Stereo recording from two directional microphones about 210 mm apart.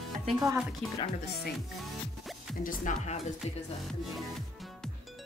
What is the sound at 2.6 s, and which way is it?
Speech, 40° left (ahead or behind).